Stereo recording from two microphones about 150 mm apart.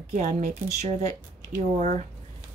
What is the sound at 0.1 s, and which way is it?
A woman's voice, 55° right (ahead or behind).